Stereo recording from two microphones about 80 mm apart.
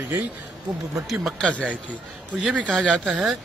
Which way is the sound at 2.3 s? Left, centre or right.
Centre.